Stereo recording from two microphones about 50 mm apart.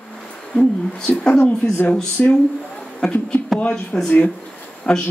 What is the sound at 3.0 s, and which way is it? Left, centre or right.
Speech, centre.